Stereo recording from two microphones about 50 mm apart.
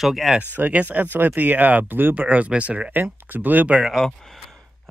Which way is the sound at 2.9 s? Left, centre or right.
Right.